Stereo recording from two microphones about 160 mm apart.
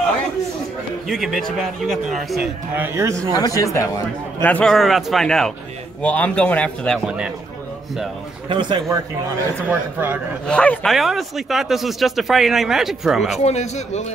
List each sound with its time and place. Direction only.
1.0 s speech: centre (ahead or behind)
2.7 s a man's voice: 15° right (ahead or behind)
3.3 s speech: 20° left (ahead or behind)
4.5 s a man's voice: 5° left (ahead or behind)
7.1 s speech: 5° right (ahead or behind)
8.5 s a man's voice: 30° right (ahead or behind)
9.7 s a man's voice: 10° right (ahead or behind)
10.4 s speech: 5° left (ahead or behind)
13.4 s speech: 45° left (ahead or behind)